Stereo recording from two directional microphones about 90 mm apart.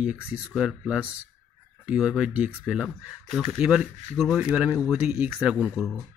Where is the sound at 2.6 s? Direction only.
5° right (ahead or behind).